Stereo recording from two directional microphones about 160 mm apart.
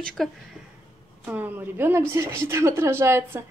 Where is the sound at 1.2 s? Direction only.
10° right (ahead or behind).